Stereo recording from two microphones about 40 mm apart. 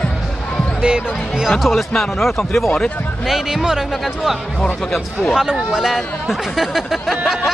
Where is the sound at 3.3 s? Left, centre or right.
Centre.